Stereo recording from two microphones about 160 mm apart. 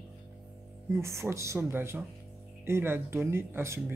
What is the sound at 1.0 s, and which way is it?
Speech, 15° right (ahead or behind).